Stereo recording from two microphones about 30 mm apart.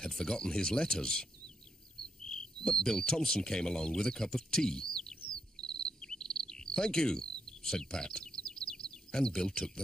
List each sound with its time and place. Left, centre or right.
0.1 s speech: centre
2.0 s cricket: left